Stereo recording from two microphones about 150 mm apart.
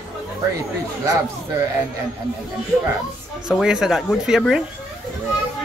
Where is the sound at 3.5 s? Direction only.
5° right (ahead or behind).